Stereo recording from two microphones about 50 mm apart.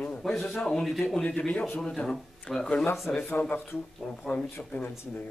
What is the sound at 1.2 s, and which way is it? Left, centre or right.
A man's voice, left.